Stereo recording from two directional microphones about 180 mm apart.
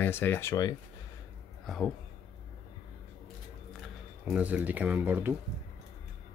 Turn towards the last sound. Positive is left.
turn(degrees=-10)  # may be behind; listen again after turning